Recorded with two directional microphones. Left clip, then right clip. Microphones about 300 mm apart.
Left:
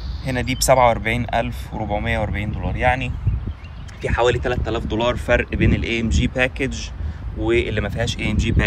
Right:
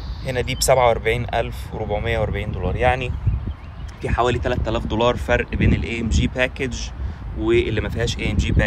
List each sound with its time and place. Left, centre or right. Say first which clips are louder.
0.2 s speech: even; centre